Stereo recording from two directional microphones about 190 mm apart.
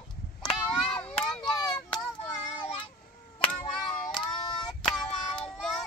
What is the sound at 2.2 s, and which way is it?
Child singing, 25° left (ahead or behind).